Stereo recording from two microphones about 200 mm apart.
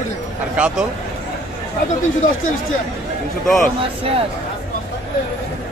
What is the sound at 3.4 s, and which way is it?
Speech, centre (ahead or behind).